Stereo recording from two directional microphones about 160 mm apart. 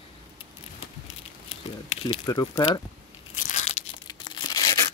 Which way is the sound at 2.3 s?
25° left (ahead or behind).